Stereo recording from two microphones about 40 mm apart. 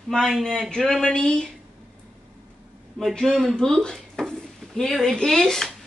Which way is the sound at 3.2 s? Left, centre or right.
Centre.